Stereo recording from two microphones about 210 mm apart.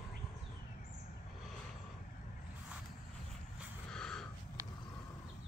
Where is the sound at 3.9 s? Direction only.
5° left (ahead or behind).